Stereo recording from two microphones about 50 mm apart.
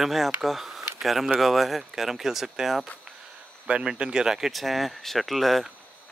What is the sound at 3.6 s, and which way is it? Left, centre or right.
Speech, centre.